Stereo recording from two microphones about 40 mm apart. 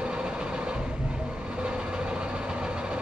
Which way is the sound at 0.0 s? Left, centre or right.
Right.